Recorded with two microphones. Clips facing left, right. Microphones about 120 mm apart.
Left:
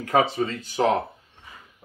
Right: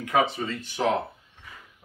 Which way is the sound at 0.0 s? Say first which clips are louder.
Left 3 dB; 35° left (ahead or behind).